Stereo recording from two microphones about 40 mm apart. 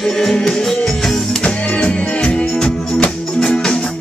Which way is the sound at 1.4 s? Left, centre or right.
Left.